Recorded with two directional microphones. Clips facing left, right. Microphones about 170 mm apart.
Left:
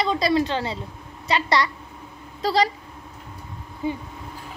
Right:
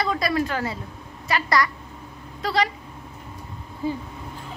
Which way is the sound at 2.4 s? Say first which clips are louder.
Left 3 dB; 35° left (ahead or behind).